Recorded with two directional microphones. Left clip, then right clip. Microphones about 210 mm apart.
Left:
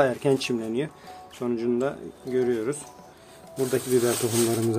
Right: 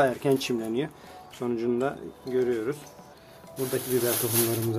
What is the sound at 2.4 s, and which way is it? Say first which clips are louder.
Speech: left 2 dB; 15° left (ahead or behind).